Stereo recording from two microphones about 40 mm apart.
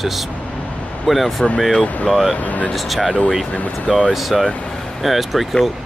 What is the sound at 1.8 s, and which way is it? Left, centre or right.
Speech, left.